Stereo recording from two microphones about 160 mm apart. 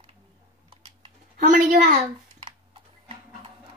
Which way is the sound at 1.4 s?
55° right (ahead or behind).